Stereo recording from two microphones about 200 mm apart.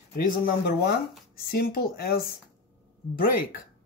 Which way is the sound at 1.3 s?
50° left (ahead or behind).